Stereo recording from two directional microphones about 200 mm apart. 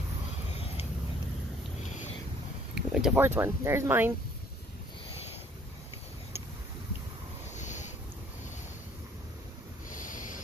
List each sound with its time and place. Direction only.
2.7 s speech: 5° right (ahead or behind)
7.5 s a sound: 35° left (ahead or behind)
9.8 s snort: 40° left (ahead or behind)